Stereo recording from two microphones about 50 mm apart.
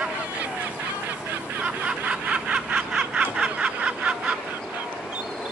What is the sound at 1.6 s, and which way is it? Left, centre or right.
Snicker, right.